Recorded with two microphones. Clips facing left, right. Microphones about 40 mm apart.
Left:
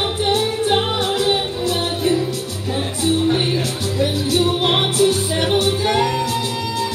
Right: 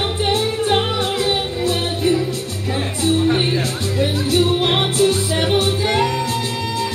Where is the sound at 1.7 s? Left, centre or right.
Right.